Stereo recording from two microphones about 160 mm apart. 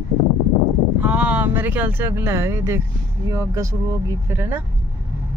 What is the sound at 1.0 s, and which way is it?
Speech, 10° right (ahead or behind).